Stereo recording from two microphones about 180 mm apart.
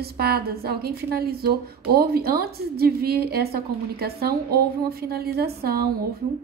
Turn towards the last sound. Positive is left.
turn(degrees=-60)  # may be behind; listen again after turning